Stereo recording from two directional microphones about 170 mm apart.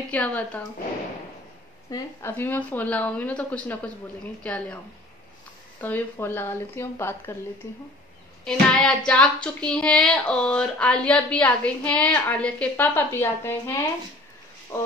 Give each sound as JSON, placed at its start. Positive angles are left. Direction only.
{"t": 0.1, "sound": "speech", "side_deg": 10}
{"t": 1.9, "sound": "speech", "side_deg": 15}
{"t": 5.8, "sound": "speech", "side_deg": 10}
{"t": 8.5, "sound": "speech", "side_deg": 5}